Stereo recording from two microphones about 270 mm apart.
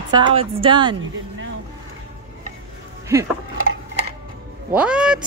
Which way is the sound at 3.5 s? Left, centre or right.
Right.